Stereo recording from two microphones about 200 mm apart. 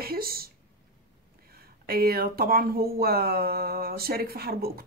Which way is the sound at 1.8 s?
50° right (ahead or behind).